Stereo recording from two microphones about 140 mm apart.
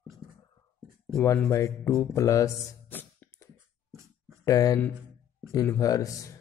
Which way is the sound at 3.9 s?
20° right (ahead or behind).